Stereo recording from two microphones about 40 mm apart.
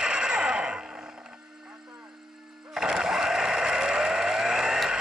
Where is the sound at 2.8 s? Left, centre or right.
Centre.